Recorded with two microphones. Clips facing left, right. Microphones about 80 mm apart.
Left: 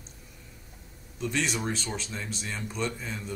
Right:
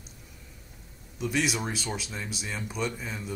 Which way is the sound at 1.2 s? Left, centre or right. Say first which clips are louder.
Right 1 dB; centre.